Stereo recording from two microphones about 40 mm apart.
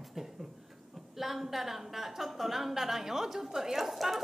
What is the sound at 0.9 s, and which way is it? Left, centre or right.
A woman's voice, centre.